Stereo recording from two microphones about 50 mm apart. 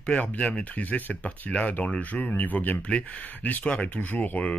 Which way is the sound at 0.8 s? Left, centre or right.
Left.